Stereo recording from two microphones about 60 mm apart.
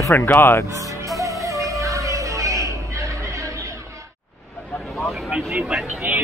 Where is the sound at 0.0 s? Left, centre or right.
Left.